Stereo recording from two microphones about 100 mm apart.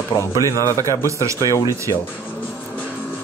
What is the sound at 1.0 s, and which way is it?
Speech, 30° right (ahead or behind).